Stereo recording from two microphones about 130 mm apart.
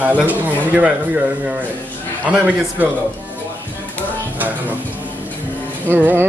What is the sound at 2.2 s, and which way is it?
Speech, 10° right (ahead or behind).